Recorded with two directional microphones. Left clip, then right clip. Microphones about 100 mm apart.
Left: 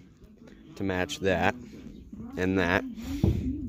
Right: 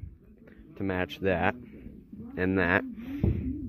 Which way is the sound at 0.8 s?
20° left (ahead or behind).